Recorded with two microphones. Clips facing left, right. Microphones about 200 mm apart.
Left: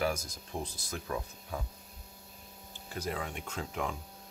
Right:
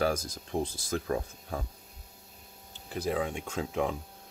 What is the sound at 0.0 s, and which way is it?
Speech, 35° right (ahead or behind).